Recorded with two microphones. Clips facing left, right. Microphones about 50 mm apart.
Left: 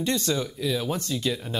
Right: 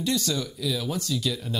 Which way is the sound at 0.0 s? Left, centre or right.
Left.